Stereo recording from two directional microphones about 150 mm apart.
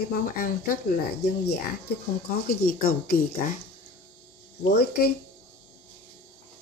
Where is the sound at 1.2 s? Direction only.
90° left.